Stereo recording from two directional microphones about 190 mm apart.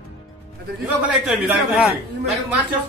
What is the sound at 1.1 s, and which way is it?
Speech, centre (ahead or behind).